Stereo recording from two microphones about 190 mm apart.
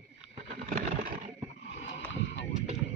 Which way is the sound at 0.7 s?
35° right (ahead or behind).